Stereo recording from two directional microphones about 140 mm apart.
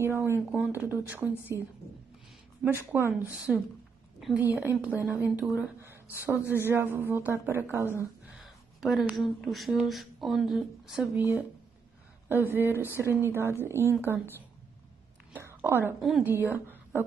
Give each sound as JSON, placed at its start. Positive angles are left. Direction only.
{"t": 0.0, "sound": "speech", "side_deg": -15}
{"t": 2.6, "sound": "a woman's voice", "side_deg": -15}
{"t": 8.4, "sound": "a sound", "side_deg": 0}
{"t": 9.1, "sound": "speech", "side_deg": 0}
{"t": 11.1, "sound": "speech", "side_deg": -15}
{"t": 15.3, "sound": "whispering", "side_deg": -15}
{"t": 16.2, "sound": "a woman's voice", "side_deg": -15}